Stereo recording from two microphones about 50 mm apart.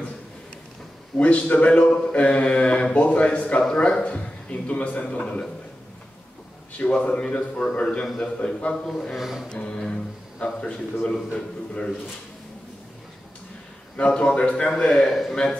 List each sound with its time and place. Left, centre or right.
1.1 s a man's voice: left
1.9 s a man's voice: centre
2.1 s a man's voice: left
6.8 s a man's voice: left
9.1 s speech: centre
9.5 s a man's voice: centre
13.9 s a man's voice: left
14.8 s a man's voice: centre